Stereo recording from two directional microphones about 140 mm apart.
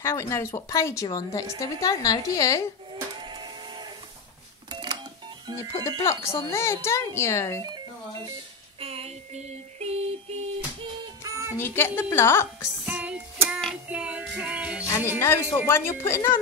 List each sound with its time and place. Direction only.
0.0 s speech: 20° left (ahead or behind)
4.6 s cash register: 30° right (ahead or behind)
5.9 s speech: 20° left (ahead or behind)
8.7 s child singing: 45° right (ahead or behind)
11.0 s child singing: 20° right (ahead or behind)
11.5 s speech: 15° left (ahead or behind)
12.8 s music: 10° right (ahead or behind)
15.1 s speech: 20° left (ahead or behind)